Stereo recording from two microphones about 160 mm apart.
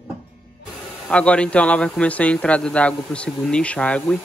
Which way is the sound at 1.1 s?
5° left (ahead or behind).